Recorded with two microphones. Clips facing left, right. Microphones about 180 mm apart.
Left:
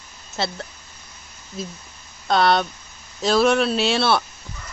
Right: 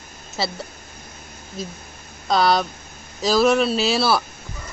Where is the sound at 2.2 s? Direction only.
Centre (ahead or behind).